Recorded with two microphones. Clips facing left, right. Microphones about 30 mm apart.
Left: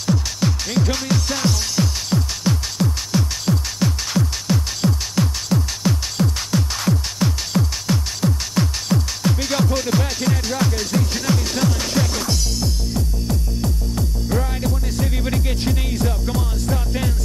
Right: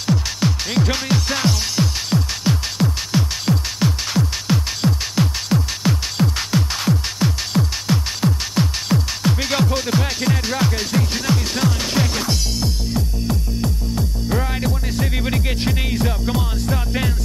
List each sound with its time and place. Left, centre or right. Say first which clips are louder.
0.0 s music: right 1 dB; centre